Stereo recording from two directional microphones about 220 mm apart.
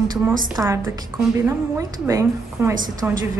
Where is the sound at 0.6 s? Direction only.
10° right (ahead or behind).